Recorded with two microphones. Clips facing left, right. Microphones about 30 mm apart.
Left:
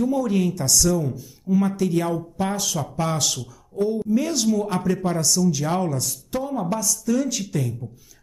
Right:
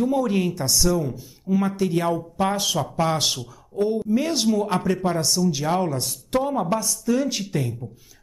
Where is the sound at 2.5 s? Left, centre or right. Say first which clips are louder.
Right 3 dB; right.